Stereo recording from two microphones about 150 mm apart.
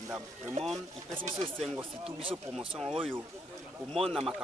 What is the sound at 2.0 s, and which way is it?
Speech, 35° right (ahead or behind).